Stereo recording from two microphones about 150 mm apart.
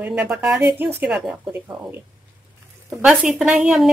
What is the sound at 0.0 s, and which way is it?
Speech, 5° right (ahead or behind).